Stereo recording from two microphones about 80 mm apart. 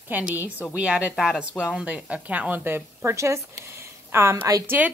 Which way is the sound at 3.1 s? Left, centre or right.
Right.